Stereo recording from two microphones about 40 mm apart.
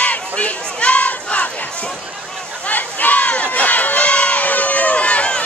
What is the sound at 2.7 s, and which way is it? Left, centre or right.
Crowd, left.